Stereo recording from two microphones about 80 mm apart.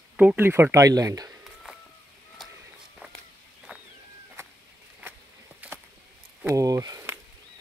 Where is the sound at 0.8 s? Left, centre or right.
Right.